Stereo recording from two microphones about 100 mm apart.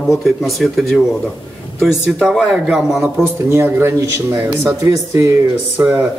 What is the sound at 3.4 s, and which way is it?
Speech, 25° right (ahead or behind).